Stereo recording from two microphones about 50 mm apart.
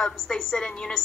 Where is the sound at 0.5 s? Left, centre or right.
Centre.